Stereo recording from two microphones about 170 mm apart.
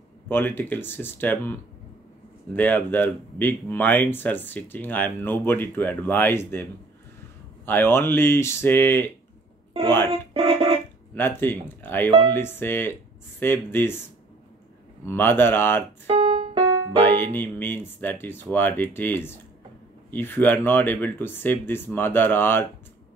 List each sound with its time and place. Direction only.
0.3 s speech: 10° left (ahead or behind)
10.3 s music: 35° right (ahead or behind)
11.1 s speech: 15° left (ahead or behind)
15.0 s speech: 15° left (ahead or behind)
16.1 s keyboard: 35° right (ahead or behind)
17.0 s speech: 10° left (ahead or behind)